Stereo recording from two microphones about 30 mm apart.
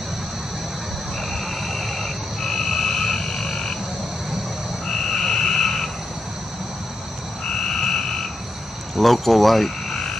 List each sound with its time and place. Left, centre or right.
1.7 s frog: centre
2.6 s frog: centre
4.8 s frog: centre
8.9 s speech: centre